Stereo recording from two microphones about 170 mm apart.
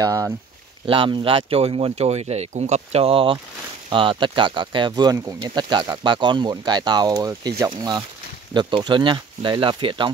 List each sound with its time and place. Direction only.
0.0 s speech: 20° right (ahead or behind)
0.8 s speech: 30° right (ahead or behind)